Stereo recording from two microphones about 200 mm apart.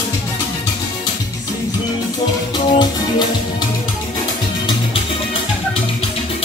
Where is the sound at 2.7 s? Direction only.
20° left (ahead or behind).